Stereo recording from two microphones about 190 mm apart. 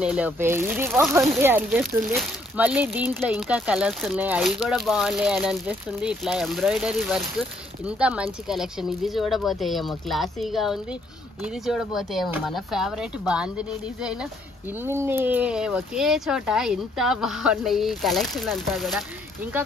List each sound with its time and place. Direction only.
0.0 s speech: 5° right (ahead or behind)